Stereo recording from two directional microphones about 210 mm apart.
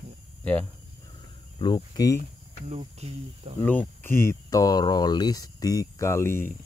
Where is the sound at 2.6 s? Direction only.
30° right (ahead or behind).